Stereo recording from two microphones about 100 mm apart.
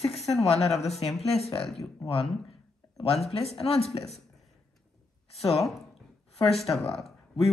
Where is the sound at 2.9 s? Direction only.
85° left.